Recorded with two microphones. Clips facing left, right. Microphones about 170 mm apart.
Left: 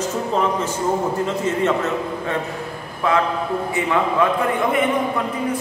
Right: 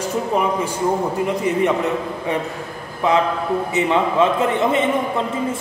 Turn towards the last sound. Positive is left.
turn(degrees=-25)  # may be behind; listen again after turning